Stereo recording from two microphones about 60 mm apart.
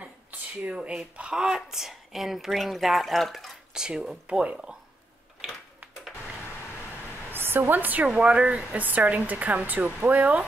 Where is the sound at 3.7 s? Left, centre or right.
Centre.